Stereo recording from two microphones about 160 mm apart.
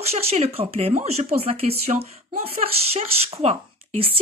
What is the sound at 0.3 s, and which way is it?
Speech, 40° right (ahead or behind).